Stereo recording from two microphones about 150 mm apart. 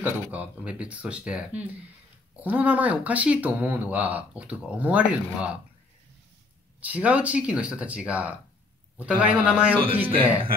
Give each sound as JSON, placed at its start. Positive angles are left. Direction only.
{"t": 0.0, "sound": "speech", "side_deg": -10}
{"t": 6.8, "sound": "speech", "side_deg": -10}
{"t": 10.0, "sound": "speech", "side_deg": -35}